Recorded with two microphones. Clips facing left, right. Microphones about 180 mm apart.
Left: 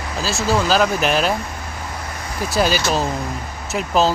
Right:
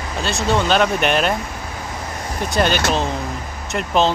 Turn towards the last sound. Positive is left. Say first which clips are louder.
# even
turn(degrees=5)  # may be behind; listen again after turning